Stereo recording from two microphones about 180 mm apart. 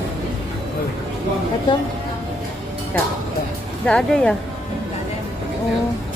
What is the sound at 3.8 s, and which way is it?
Speech, 5° left (ahead or behind).